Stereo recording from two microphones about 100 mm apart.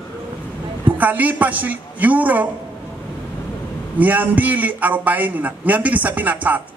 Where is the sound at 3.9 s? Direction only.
15° right (ahead or behind).